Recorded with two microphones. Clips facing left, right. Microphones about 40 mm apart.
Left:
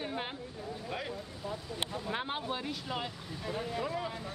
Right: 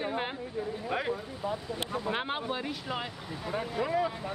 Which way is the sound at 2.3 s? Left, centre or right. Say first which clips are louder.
Right 3 dB; centre.